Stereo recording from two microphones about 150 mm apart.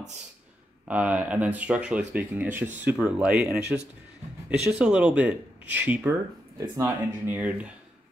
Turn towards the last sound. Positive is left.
turn(degrees=-10)  # may be behind; listen again after turning